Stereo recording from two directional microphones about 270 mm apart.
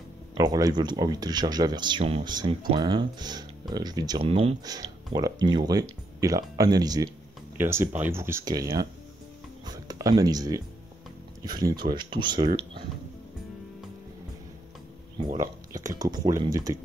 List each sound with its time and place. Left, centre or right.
0.4 s speech: centre
15.7 s speech: centre